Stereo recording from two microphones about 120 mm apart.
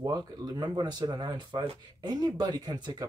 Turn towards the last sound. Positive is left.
turn(degrees=-35)  # may be behind; listen again after turning